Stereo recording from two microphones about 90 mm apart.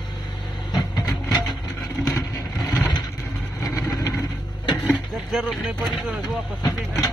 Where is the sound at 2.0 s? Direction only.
40° left (ahead or behind).